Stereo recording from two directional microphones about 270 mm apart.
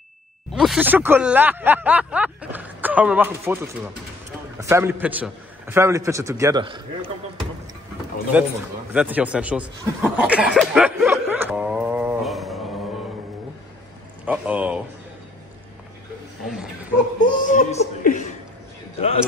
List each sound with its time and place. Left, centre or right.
0.5 s a man's voice: centre
8.3 s speech: centre
14.2 s speech: centre
17.5 s chuckle: left